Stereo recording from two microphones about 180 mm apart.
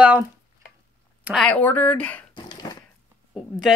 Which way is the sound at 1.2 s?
Centre (ahead or behind).